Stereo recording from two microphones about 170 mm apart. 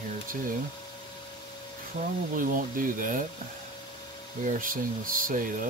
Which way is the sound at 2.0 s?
50° right (ahead or behind).